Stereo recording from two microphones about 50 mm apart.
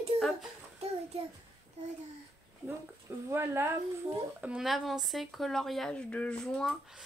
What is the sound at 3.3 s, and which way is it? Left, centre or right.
Speech, right.